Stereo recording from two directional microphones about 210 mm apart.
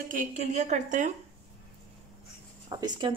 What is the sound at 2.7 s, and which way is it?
Speech, 20° right (ahead or behind).